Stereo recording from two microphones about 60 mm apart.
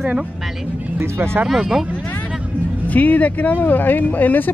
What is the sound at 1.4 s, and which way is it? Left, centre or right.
Speech, centre.